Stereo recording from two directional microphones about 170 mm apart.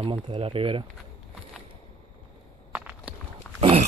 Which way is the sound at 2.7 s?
10° right (ahead or behind).